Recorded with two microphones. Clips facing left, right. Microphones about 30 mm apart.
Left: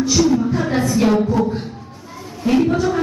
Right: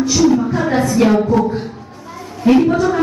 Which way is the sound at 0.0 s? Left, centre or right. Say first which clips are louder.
Right 3 dB; centre.